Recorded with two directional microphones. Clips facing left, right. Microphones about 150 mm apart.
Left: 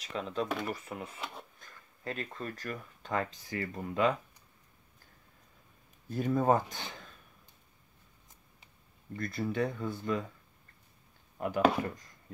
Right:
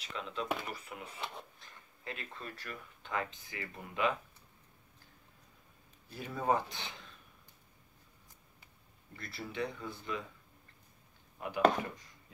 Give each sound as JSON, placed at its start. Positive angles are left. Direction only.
{"t": 0.0, "sound": "speech", "side_deg": 40}
{"t": 6.0, "sound": "speech", "side_deg": 45}
{"t": 9.1, "sound": "speech", "side_deg": 45}
{"t": 11.3, "sound": "chopping", "side_deg": 45}